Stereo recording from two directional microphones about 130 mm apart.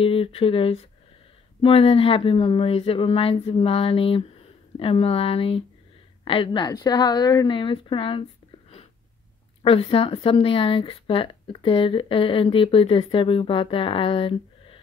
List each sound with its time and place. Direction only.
0.0 s a woman's voice: 45° left (ahead or behind)